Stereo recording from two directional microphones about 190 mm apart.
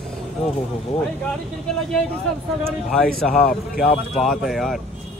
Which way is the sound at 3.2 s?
5° left (ahead or behind).